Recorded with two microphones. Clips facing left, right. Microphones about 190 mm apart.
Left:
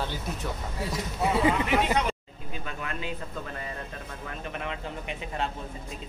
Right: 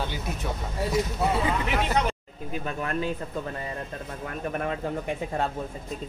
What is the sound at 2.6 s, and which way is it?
Speech, 40° right (ahead or behind).